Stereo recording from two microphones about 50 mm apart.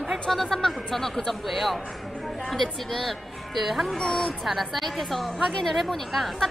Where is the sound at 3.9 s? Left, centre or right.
Centre.